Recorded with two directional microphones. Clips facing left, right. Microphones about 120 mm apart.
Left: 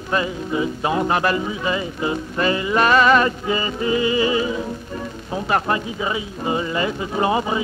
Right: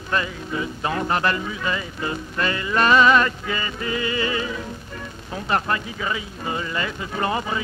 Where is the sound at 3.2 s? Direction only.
20° left (ahead or behind).